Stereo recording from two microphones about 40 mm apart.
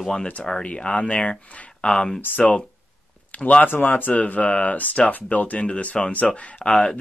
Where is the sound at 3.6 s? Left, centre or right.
Left.